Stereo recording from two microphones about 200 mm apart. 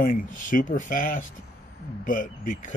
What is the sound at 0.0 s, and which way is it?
Speech, 40° left (ahead or behind).